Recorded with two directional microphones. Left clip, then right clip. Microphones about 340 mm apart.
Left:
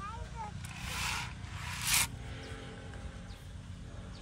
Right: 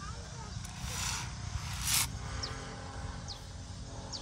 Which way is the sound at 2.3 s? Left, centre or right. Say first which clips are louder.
Right 5 dB; right.